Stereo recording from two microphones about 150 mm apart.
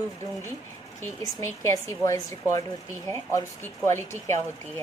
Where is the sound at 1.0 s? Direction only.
20° left (ahead or behind).